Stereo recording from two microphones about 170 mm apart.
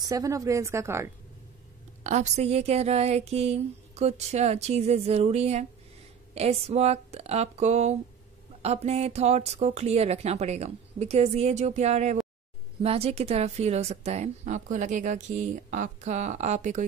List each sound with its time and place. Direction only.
0.1 s a woman's voice: 20° right (ahead or behind)
2.0 s a woman's voice: 40° right (ahead or behind)